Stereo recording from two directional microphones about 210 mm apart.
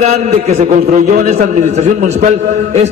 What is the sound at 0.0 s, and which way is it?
A man's voice, 30° right (ahead or behind).